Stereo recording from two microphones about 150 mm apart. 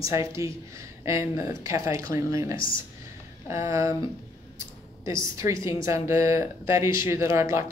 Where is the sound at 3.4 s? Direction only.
20° right (ahead or behind).